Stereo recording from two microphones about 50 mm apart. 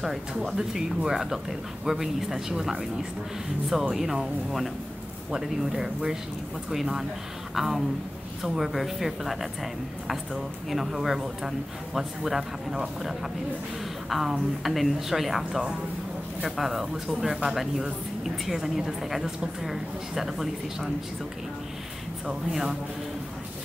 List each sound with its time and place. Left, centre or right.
0.3 s speech: centre
14.0 s speech: centre
22.2 s speech: centre